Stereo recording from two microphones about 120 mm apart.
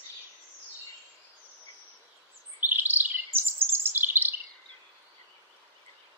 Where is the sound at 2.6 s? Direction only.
15° right (ahead or behind).